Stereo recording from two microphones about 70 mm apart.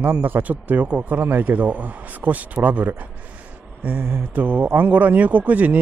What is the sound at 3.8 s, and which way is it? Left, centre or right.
Speech, right.